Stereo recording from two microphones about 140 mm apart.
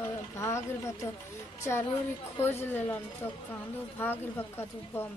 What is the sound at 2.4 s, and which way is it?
A man's voice, 15° left (ahead or behind).